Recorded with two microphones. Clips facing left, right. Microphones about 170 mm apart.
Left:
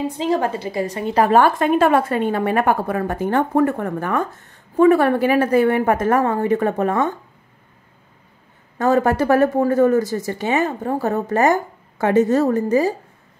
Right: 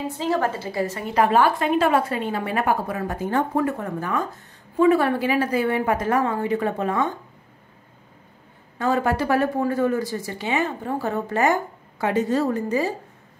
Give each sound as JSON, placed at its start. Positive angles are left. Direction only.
{"t": 0.0, "sound": "a woman's voice", "side_deg": 20}
{"t": 1.1, "sound": "a woman's voice", "side_deg": 45}
{"t": 8.7, "sound": "a woman's voice", "side_deg": 45}